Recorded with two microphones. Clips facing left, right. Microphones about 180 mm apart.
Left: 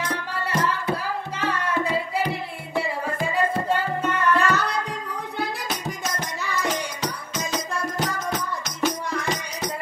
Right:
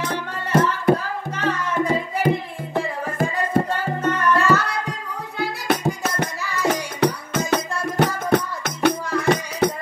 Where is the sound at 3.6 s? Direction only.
10° left (ahead or behind).